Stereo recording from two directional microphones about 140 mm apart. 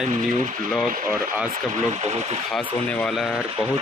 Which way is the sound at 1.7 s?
55° right (ahead or behind).